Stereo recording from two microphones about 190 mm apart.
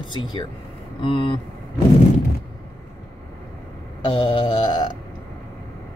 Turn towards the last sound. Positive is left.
turn(degrees=25)  # may be behind; listen again after turning